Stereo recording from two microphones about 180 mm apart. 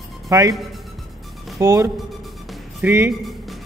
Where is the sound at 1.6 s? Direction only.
20° right (ahead or behind).